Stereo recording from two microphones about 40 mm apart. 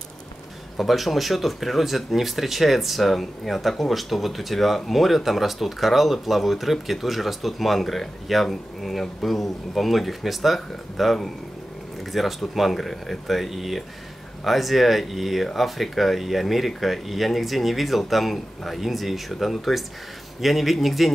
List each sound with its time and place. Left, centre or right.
0.7 s speech: centre